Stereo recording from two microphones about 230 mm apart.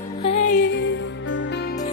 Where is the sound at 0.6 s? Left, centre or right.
Left.